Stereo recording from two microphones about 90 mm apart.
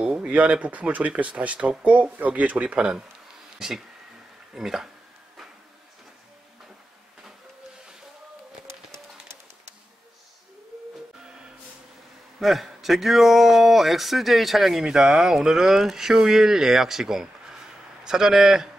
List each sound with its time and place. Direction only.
0.0 s a man's voice: 5° right (ahead or behind)
12.4 s a man's voice: centre (ahead or behind)